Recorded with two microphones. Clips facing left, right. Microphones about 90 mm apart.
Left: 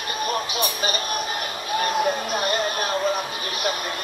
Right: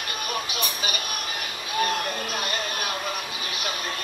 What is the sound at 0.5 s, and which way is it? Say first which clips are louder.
Speech: left 5 dB; 35° left (ahead or behind).